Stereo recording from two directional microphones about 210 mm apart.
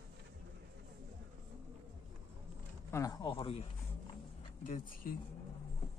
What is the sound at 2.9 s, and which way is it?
Speech, 15° left (ahead or behind).